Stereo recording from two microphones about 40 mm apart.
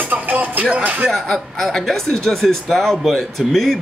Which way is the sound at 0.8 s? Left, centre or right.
Right.